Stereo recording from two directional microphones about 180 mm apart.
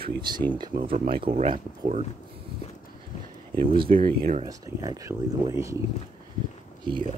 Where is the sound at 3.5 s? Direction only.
30° right (ahead or behind).